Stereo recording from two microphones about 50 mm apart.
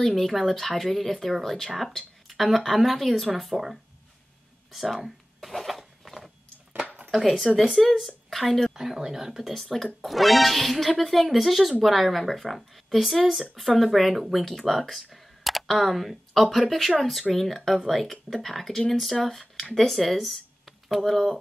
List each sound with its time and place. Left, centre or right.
0.0 s speech: centre
2.2 s speech: centre
5.0 s a sound: centre
7.1 s speech: centre